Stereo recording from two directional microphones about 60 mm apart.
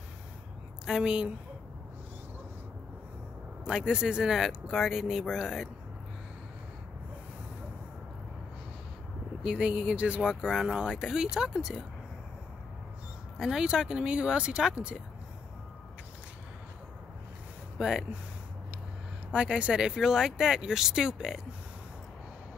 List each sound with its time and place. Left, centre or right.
0.8 s speech: centre
3.6 s speech: centre
9.4 s speech: centre
10.2 s speech: centre
13.4 s speech: centre
17.7 s speech: centre
19.3 s speech: centre